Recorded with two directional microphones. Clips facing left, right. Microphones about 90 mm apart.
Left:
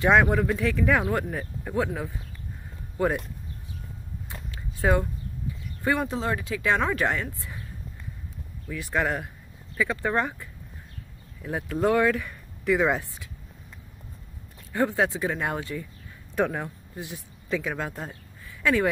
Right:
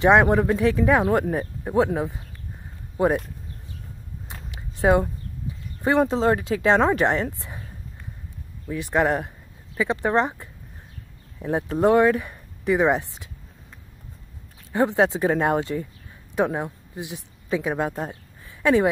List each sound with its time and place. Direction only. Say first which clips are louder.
0.0 s speech: right 4 dB; 20° right (ahead or behind)
3.0 s speech: right 4 dB; 20° right (ahead or behind)
4.3 s a sound: even; 20° right (ahead or behind)
5.8 s speech: right 6 dB; 25° right (ahead or behind)
8.6 s speech: right 5 dB; 20° right (ahead or behind)
14.7 s speech: right 4 dB; 20° right (ahead or behind)
15.1 s speech: right 7 dB; 35° right (ahead or behind)
16.3 s speech: right 3 dB; 20° right (ahead or behind)